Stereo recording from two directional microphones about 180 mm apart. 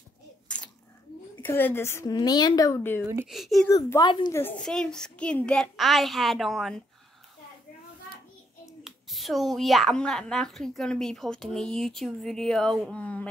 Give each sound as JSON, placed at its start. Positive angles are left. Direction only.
{"t": 1.4, "sound": "a woman's voice", "side_deg": 10}
{"t": 3.3, "sound": "speech", "side_deg": 0}
{"t": 3.6, "sound": "speech", "side_deg": 20}
{"t": 4.4, "sound": "speech", "side_deg": 10}
{"t": 8.8, "sound": "speech", "side_deg": 0}